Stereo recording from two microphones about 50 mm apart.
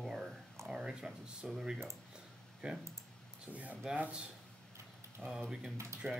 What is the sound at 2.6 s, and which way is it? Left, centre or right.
Speech, centre.